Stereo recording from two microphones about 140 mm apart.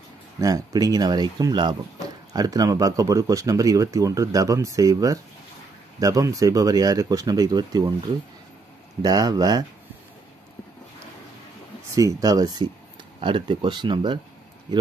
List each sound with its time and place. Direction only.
0.4 s speech: 25° right (ahead or behind)
9.0 s speech: 25° right (ahead or behind)
11.9 s speech: 25° right (ahead or behind)